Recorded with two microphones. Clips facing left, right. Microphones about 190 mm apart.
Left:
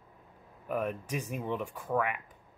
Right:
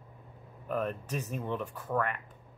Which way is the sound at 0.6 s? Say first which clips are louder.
Even; 10° left (ahead or behind).